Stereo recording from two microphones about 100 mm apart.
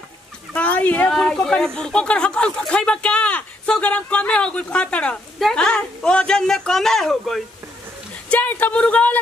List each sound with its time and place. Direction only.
0.5 s speech: 15° left (ahead or behind)
8.3 s speech: 15° left (ahead or behind)